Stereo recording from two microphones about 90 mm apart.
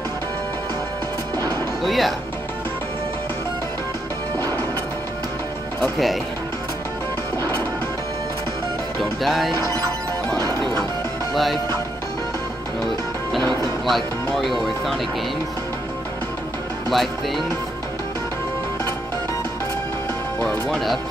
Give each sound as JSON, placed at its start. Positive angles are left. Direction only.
{"t": 1.8, "sound": "speech", "side_deg": 0}
{"t": 5.8, "sound": "speech", "side_deg": 0}
{"t": 9.2, "sound": "speech", "side_deg": 0}
{"t": 10.3, "sound": "music", "side_deg": -40}
{"t": 10.6, "sound": "music", "side_deg": -55}
{"t": 13.4, "sound": "music", "side_deg": -45}
{"t": 13.8, "sound": "speech", "side_deg": 0}
{"t": 16.9, "sound": "speech", "side_deg": 0}
{"t": 20.3, "sound": "speech", "side_deg": 10}